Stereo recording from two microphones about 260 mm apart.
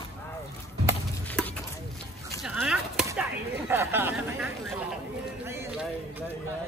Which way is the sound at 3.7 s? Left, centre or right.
Centre.